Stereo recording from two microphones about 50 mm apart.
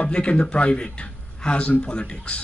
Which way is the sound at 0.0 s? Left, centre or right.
Left.